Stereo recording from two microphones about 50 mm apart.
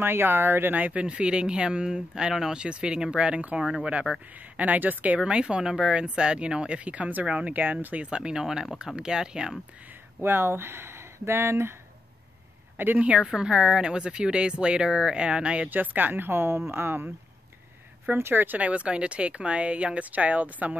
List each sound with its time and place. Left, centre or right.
0.0 s speech: right
1.0 s speech: right
4.6 s speech: right
5.2 s speech: centre
10.2 s speech: right
12.7 s speech: right
13.0 s speech: right
15.7 s speech: right
18.1 s speech: right
18.6 s speech: right